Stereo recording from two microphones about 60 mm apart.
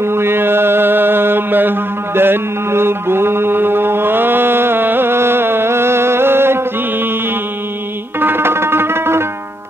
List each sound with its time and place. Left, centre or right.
0.0 s mantra: right
8.2 s music: right